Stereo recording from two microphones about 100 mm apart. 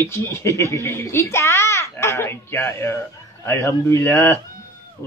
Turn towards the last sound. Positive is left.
turn(degrees=30)  # may be behind; listen again after turning